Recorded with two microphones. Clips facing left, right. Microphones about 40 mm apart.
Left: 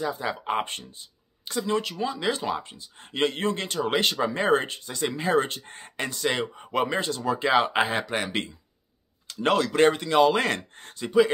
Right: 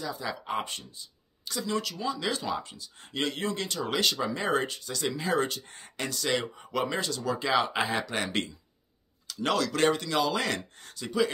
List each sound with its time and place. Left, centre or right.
0.0 s speech: left
8.2 s speech: centre
9.3 s speech: left